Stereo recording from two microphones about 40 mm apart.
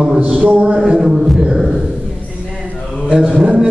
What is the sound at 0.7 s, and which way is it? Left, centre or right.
Speech, centre.